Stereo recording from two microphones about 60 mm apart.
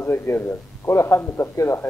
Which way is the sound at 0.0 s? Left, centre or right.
Left.